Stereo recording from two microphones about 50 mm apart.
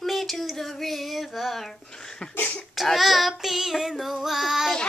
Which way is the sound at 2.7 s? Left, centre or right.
Centre.